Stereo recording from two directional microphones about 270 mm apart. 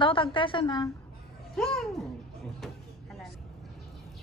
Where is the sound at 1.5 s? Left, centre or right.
Centre.